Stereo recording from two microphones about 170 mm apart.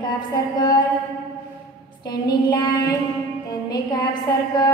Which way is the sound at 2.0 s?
25° left (ahead or behind).